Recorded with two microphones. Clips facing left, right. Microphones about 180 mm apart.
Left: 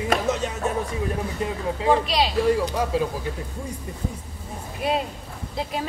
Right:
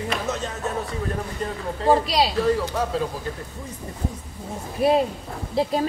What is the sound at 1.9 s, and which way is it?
Speech, 35° right (ahead or behind).